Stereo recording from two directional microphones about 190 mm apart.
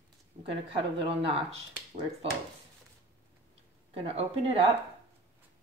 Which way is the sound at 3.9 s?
30° right (ahead or behind).